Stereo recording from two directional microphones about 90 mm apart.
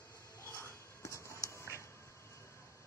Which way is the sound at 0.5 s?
30° left (ahead or behind).